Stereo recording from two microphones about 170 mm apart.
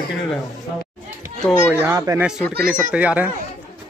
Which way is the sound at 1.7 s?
15° right (ahead or behind).